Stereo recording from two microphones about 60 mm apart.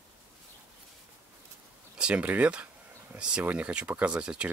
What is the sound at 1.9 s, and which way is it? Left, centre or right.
Speech, centre.